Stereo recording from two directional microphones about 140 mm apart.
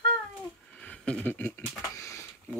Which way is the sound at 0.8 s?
10° left (ahead or behind).